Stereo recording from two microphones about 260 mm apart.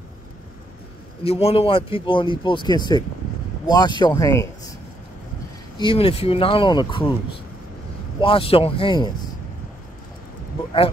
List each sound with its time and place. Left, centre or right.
1.2 s speech: left
5.8 s speech: left
8.2 s speech: left